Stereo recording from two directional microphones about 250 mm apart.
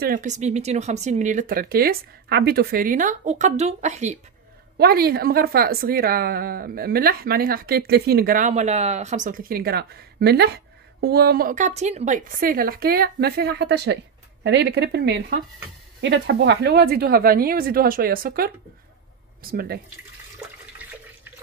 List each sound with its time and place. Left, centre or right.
0.0 s speech: right
4.7 s a woman's voice: right